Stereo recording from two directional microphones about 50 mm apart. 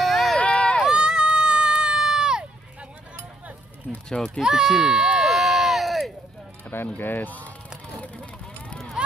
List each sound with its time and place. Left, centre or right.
0.0 s run: centre
0.4 s run: left
0.8 s run: centre
4.4 s a sound: centre
7.0 s speech: left
8.0 s a sound: left
9.0 s run: centre